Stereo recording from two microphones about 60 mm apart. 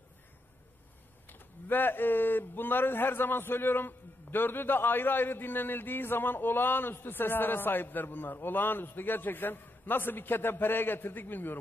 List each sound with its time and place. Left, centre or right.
1.3 s speech: left